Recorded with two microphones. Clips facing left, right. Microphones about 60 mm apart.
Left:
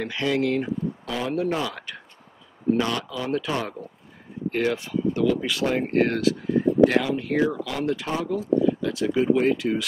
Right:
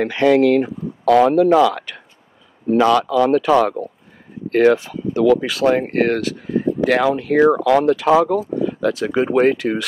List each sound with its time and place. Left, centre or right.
0.0 s speech: right
4.5 s speech: right